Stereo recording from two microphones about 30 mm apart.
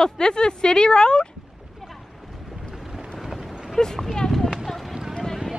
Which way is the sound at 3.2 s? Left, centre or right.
Centre.